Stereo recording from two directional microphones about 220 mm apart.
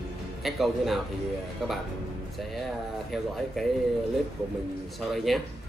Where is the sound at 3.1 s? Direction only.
Centre (ahead or behind).